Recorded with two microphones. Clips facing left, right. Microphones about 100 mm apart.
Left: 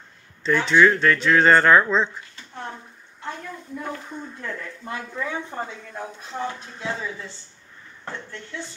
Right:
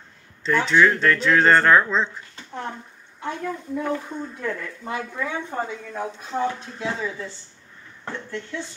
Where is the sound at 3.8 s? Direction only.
Centre (ahead or behind).